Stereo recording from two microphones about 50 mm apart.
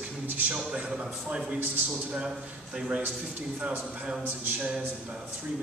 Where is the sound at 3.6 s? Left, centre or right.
Right.